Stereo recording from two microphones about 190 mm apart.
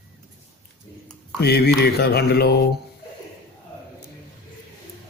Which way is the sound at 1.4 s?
60° left (ahead or behind).